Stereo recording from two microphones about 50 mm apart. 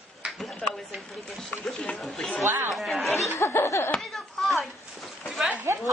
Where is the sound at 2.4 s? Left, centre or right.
Right.